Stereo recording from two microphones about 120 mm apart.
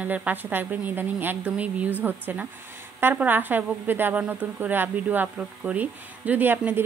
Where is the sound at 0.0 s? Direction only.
15° right (ahead or behind).